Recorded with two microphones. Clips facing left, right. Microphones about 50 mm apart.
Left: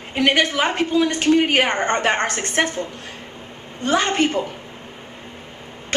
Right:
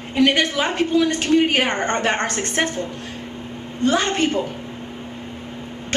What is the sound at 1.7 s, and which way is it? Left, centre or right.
A woman's voice, centre.